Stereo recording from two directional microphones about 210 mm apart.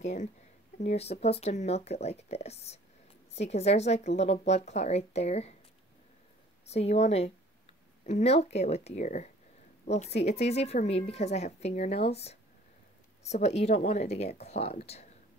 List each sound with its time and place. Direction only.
0.0 s speech: 35° left (ahead or behind)
6.7 s speech: 30° left (ahead or behind)